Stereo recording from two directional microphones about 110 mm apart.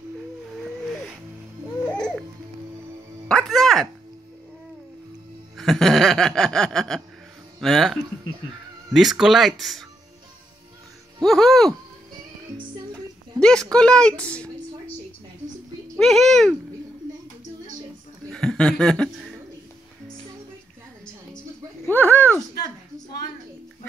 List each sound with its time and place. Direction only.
1.9 s music: 5° left (ahead or behind)
3.3 s music: 5° left (ahead or behind)
5.6 s speech: centre (ahead or behind)
11.2 s speech: 5° left (ahead or behind)
13.4 s a woman's voice: 5° left (ahead or behind)
16.0 s speech: centre (ahead or behind)
18.3 s speech: 5° left (ahead or behind)
19.1 s a sound: 5° right (ahead or behind)
21.8 s a sound: 15° left (ahead or behind)